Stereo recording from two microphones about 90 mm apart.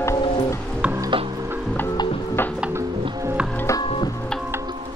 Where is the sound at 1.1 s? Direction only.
80° right.